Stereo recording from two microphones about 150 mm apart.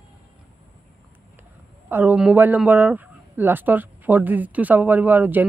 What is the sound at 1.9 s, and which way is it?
Speech, 15° right (ahead or behind).